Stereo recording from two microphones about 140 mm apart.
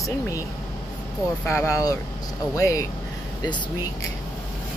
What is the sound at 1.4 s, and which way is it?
Speech, 20° left (ahead or behind).